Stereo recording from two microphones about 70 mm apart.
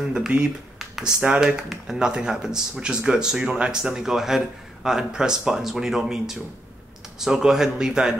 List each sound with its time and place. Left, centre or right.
0.3 s speech: centre